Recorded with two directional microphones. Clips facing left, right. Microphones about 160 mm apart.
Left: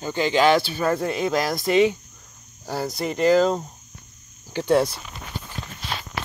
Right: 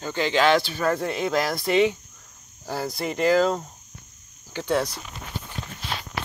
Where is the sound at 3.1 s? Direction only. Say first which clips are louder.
Left 2 dB; 25° left (ahead or behind).